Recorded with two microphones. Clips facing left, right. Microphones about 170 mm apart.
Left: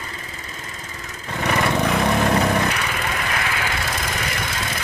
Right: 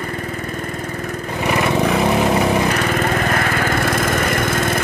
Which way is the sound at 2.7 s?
45° right (ahead or behind).